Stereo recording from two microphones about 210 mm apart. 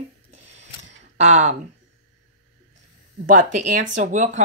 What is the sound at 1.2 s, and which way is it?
Speech, 30° right (ahead or behind).